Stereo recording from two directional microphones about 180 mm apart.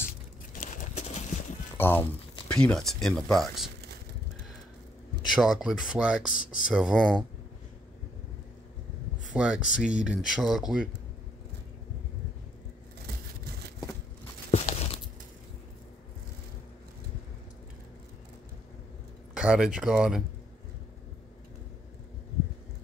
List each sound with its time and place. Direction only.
0.6 s a sound: 45° left (ahead or behind)
1.8 s speech: 10° left (ahead or behind)
5.3 s speech: centre (ahead or behind)
9.3 s speech: 5° right (ahead or behind)
14.5 s a sound: 35° left (ahead or behind)
19.3 s speech: 5° right (ahead or behind)